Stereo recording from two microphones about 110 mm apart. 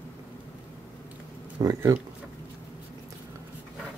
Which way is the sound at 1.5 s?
30° right (ahead or behind).